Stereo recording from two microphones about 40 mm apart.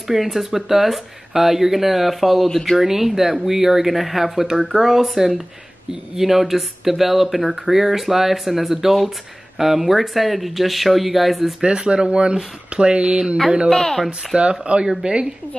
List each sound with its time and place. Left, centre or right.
0.1 s speech: centre
2.8 s speech: centre
11.6 s speech: right
13.7 s speech: centre
14.3 s speech: right